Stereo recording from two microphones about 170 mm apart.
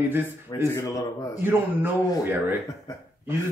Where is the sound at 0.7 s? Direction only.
20° left (ahead or behind).